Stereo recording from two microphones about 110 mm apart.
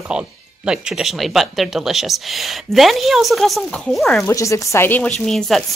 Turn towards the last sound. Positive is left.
turn(degrees=0)  # may be behind; listen again after turning